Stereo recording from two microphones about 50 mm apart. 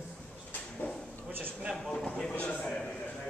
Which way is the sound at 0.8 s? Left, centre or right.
Left.